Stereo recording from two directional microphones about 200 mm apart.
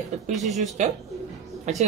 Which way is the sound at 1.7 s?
35° right (ahead or behind).